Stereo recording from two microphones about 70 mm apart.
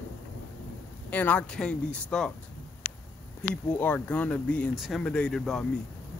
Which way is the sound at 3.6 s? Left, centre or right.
Left.